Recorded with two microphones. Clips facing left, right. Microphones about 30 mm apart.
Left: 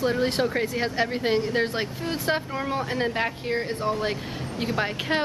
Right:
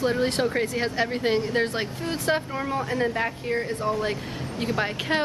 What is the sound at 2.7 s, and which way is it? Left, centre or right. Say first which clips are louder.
Speech: right 1 dB; left.